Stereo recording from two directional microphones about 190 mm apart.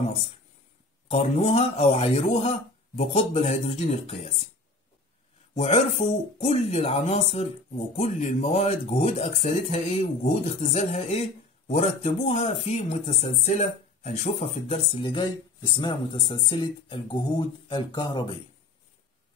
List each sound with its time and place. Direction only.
1.0 s speech: 35° left (ahead or behind)
5.5 s speech: 35° left (ahead or behind)